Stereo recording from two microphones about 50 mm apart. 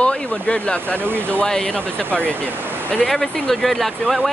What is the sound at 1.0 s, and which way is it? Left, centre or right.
Speech, right.